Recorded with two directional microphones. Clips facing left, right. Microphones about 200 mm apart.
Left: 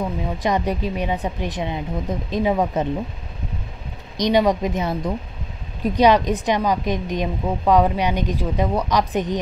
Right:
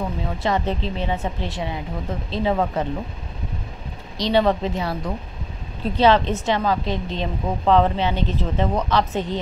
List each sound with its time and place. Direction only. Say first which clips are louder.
0.4 s a woman's voice: left 1 dB; 15° left (ahead or behind)
4.2 s a woman's voice: left 1 dB; 15° left (ahead or behind)